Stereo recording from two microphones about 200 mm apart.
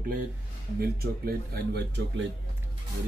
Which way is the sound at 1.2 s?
50° right (ahead or behind).